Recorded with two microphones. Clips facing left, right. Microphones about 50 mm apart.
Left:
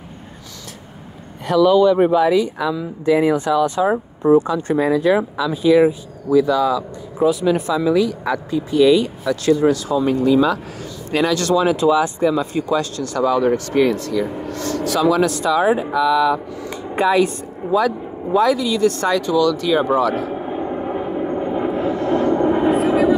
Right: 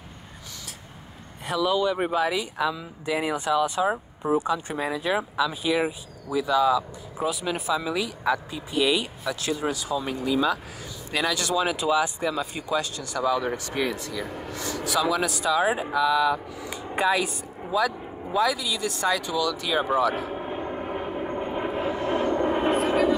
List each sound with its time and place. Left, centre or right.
1.5 s speech: centre
10.0 s speech: centre
11.3 s speech: centre
13.2 s speech: centre
13.8 s speech: centre
15.0 s speech: centre
17.6 s speech: centre
18.8 s speech: centre
20.8 s vehicle: centre
21.4 s vehicle: centre
22.7 s vehicle: centre